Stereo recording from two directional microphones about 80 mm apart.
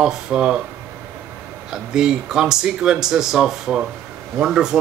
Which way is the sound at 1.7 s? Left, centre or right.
Centre.